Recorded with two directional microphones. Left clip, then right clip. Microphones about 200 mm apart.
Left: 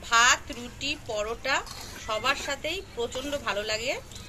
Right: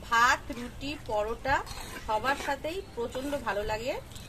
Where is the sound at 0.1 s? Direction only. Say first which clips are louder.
Left 3 dB; 35° right (ahead or behind).